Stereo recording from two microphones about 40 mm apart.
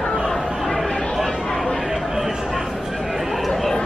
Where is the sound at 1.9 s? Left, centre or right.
Centre.